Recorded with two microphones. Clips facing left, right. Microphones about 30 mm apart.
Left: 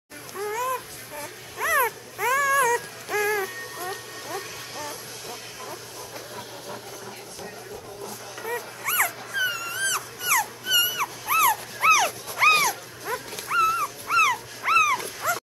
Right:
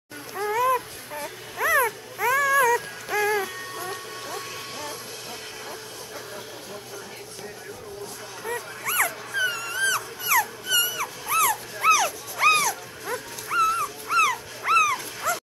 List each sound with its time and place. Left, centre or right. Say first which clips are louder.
0.3 s a sound: right 5 dB; centre
4.3 s music: left 2 dB; right
8.5 s dog: even; centre
10.7 s dog: left 5 dB; centre